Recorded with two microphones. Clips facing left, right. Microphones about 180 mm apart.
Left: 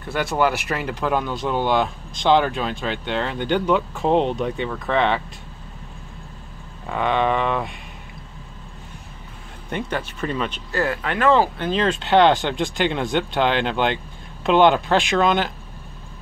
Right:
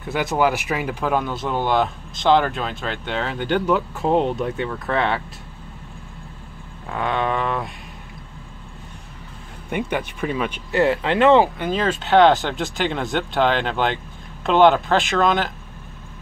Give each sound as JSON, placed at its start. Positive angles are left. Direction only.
{"t": 0.0, "sound": "speech", "side_deg": -15}
{"t": 6.9, "sound": "speech", "side_deg": 0}
{"t": 9.7, "sound": "speech", "side_deg": -15}
{"t": 10.7, "sound": "speech", "side_deg": -25}
{"t": 11.6, "sound": "speech", "side_deg": -5}